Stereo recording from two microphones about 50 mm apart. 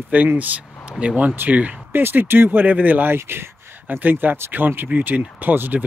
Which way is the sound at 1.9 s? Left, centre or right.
Right.